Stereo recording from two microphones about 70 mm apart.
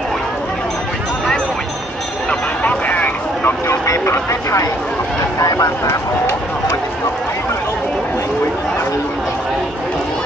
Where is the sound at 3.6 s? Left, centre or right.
Left.